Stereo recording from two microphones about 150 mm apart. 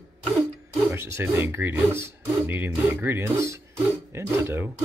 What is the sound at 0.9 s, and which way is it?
Speech, 15° right (ahead or behind).